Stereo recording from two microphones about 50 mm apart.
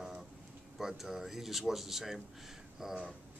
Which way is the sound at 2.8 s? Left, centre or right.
Centre.